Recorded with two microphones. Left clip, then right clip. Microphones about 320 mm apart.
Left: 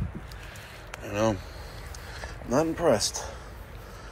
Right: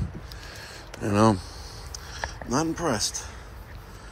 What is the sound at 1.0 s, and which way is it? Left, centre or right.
Speech, centre.